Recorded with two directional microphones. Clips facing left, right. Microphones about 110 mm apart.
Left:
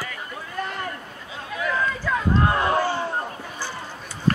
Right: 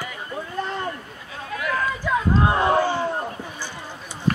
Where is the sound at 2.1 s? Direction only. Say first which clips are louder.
Right 2 dB; 20° right (ahead or behind).